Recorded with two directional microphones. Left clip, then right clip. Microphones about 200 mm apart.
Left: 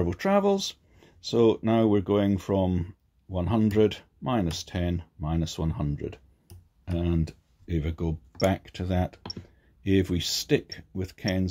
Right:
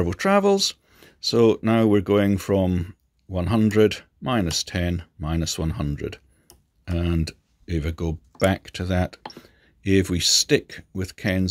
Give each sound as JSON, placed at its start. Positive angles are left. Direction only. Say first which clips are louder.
{"t": 0.0, "sound": "speech", "louder": "right 5 dB", "side_deg": -30}